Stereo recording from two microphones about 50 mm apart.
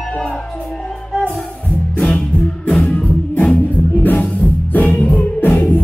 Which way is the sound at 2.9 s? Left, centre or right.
Left.